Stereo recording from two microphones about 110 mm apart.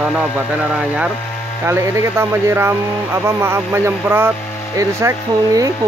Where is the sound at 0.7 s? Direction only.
5° right (ahead or behind).